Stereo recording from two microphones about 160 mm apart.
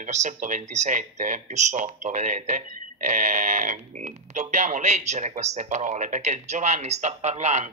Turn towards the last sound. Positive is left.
turn(degrees=-45)  # may be behind; listen again after turning